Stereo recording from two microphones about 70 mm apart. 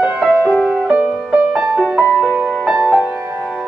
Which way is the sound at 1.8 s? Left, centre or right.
Centre.